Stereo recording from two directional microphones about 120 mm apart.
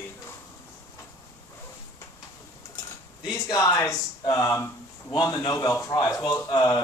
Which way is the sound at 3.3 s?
30° left (ahead or behind).